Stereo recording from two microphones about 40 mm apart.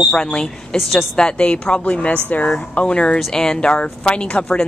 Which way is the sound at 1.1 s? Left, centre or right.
Left.